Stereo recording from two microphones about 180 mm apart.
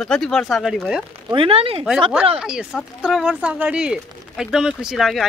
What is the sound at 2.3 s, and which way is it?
Speech, 5° right (ahead or behind).